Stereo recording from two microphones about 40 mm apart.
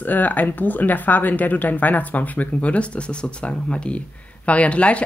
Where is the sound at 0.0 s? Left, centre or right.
Left.